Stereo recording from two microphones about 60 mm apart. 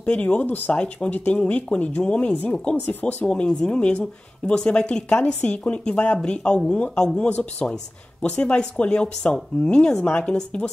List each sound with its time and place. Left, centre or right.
0.0 s speech: left
2.9 s speech: left
3.3 s speech: centre